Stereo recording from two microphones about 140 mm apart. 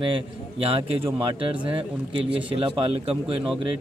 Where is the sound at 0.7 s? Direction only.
40° right (ahead or behind).